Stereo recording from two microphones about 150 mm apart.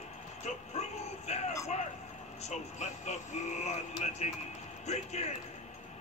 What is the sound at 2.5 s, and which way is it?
Speech, 50° left (ahead or behind).